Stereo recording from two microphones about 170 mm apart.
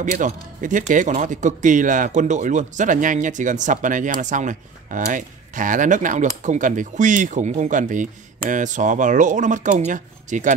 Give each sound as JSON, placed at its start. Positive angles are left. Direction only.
{"t": 0.0, "sound": "speech", "side_deg": -50}